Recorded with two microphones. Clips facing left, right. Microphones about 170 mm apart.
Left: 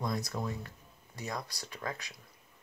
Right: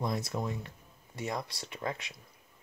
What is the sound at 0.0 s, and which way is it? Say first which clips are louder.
Speech: right 2 dB; 25° right (ahead or behind).